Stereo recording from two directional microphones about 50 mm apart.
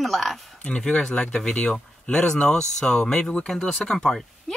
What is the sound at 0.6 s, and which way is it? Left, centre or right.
Speech, left.